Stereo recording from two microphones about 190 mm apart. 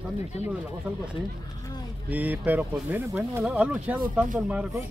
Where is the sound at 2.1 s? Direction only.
10° right (ahead or behind).